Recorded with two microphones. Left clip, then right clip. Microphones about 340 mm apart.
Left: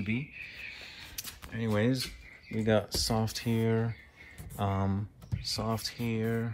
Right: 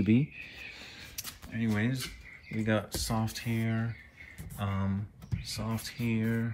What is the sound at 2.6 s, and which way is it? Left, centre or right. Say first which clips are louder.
Speech: left 3 dB; centre.